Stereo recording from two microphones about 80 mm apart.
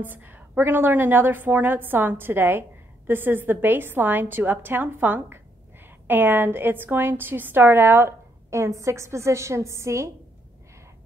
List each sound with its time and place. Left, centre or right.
0.0 s a woman's voice: right
8.5 s a woman's voice: right